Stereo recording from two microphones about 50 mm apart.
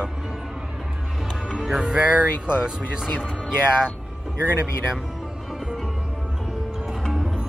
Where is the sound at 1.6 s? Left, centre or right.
Centre.